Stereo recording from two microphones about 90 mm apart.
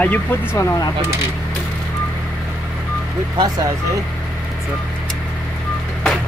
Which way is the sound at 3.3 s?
45° right (ahead or behind).